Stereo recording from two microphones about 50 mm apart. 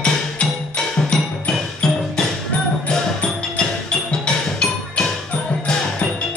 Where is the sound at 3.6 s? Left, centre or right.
Centre.